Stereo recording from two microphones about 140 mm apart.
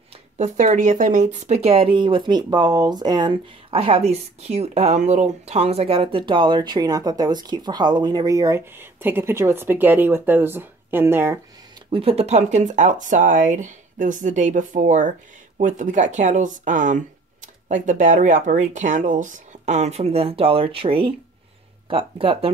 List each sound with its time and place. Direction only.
0.4 s speech: 65° right (ahead or behind); by 3.3 s 30° right (ahead or behind)
3.7 s speech: 45° right (ahead or behind); by 11.3 s 15° right (ahead or behind)
11.9 s speech: 45° right (ahead or behind)